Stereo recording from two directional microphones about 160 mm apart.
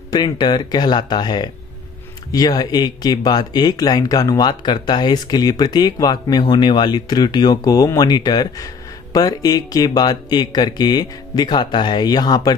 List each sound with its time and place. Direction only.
0.1 s speech: 30° left (ahead or behind)